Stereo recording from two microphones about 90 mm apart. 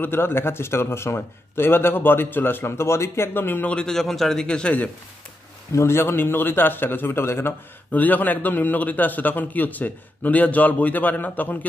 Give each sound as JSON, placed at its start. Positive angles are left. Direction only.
{"t": 0.0, "sound": "a man's voice", "side_deg": 25}
{"t": 3.7, "sound": "a man's voice", "side_deg": 5}
{"t": 5.8, "sound": "a man's voice", "side_deg": 30}